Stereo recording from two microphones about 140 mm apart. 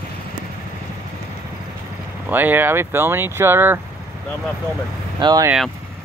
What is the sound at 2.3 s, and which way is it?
Speech, 15° right (ahead or behind).